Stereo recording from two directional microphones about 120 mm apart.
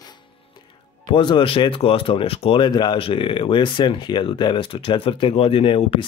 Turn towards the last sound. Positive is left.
turn(degrees=50)  # may be behind; listen again after turning